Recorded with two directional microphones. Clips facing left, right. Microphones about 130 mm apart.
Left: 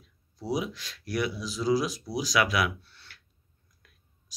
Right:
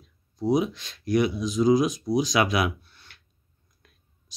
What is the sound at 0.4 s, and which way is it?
Speech, 25° right (ahead or behind).